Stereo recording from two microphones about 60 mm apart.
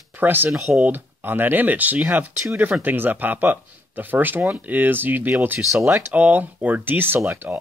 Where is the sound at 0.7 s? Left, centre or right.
Right.